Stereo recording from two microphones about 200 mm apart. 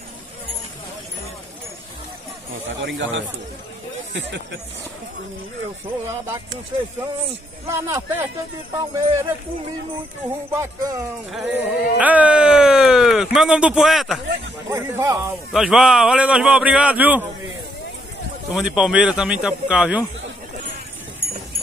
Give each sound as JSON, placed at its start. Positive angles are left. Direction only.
{"t": 3.0, "sound": "speech", "side_deg": -65}
{"t": 7.6, "sound": "speech", "side_deg": -15}
{"t": 10.5, "sound": "speech", "side_deg": -15}
{"t": 14.7, "sound": "speech", "side_deg": -15}
{"t": 15.5, "sound": "speech", "side_deg": 0}
{"t": 18.5, "sound": "speech", "side_deg": -5}